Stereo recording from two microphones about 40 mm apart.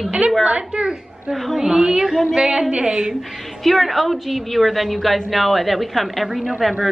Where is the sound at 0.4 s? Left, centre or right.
Right.